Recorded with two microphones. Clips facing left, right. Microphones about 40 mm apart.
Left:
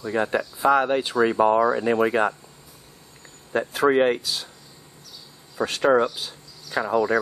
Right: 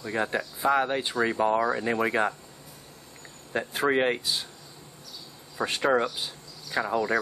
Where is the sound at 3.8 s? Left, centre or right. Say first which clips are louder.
Left 6 dB; centre.